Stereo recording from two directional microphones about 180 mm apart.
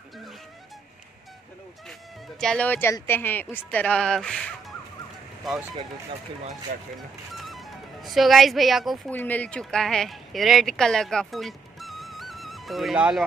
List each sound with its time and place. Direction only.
2.4 s speech: 5° left (ahead or behind)
7.3 s speech: centre (ahead or behind)